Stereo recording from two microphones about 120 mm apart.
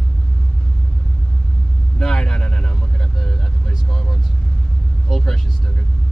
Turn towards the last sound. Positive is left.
turn(degrees=5)  # may be behind; listen again after turning